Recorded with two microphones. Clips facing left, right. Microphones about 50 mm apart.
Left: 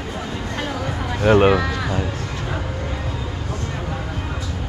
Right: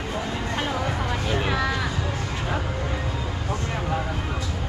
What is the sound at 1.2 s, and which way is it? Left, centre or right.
Speech, left.